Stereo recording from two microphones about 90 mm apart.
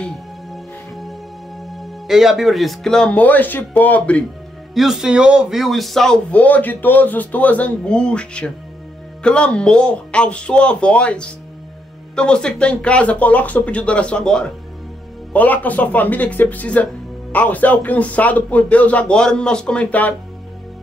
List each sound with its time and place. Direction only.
0.5 s music: centre (ahead or behind)
1.6 s speech: centre (ahead or behind)
4.7 s a man's voice: 5° right (ahead or behind)
6.3 s a man's voice: 20° left (ahead or behind)